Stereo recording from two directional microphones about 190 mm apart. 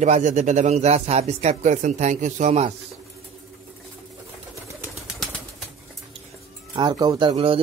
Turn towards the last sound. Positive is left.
turn(degrees=-30)  # may be behind; listen again after turning